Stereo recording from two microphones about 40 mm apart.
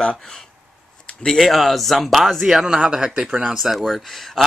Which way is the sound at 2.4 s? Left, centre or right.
Centre.